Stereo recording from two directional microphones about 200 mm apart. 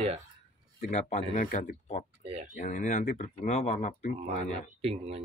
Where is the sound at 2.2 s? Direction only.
30° right (ahead or behind).